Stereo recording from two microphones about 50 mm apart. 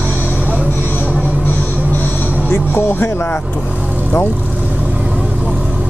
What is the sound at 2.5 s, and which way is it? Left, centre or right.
Speech, left.